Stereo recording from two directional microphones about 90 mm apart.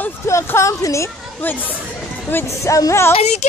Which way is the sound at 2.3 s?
25° left (ahead or behind).